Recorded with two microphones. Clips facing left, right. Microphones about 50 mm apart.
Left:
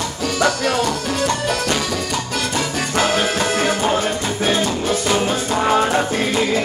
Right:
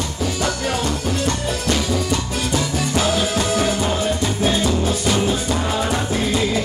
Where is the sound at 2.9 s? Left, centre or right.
Left.